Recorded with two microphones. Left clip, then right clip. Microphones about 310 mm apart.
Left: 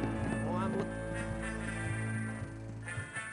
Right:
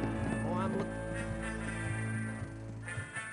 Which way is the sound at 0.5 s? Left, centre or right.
Right.